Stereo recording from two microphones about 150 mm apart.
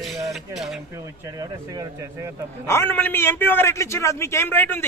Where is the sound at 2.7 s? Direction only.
15° left (ahead or behind).